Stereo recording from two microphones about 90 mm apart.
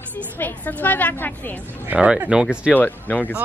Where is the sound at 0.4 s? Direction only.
20° left (ahead or behind).